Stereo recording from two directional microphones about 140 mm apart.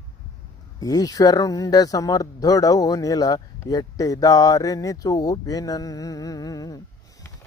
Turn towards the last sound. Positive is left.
turn(degrees=25)  # may be behind; listen again after turning